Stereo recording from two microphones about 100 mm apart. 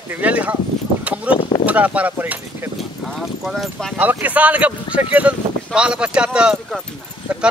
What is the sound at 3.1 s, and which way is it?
Speech, 5° left (ahead or behind).